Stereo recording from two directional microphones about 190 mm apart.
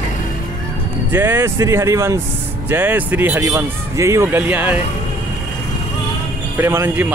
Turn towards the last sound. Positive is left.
turn(degrees=-10)  # may be behind; listen again after turning